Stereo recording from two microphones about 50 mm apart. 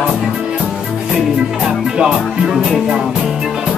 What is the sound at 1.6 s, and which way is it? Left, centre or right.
Music, centre.